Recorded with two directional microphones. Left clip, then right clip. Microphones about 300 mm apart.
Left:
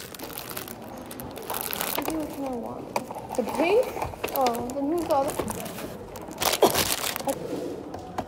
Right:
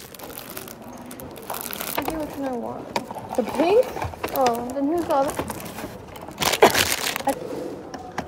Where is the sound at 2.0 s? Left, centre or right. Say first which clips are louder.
Right 7 dB; right.